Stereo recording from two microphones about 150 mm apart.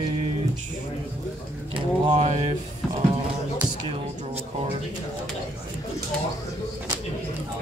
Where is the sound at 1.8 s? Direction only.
40° right (ahead or behind).